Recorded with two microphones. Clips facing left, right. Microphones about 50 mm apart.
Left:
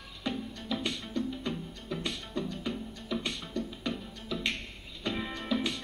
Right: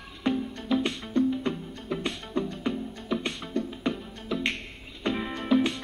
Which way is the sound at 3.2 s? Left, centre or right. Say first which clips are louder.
Right 5 dB; right.